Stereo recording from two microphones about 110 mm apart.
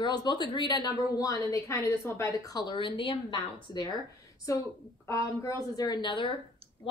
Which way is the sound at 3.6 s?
35° left (ahead or behind).